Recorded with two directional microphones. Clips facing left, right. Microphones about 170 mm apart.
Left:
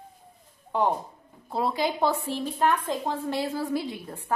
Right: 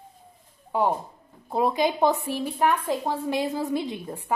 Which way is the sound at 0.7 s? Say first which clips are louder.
Right 1 dB; 5° right (ahead or behind).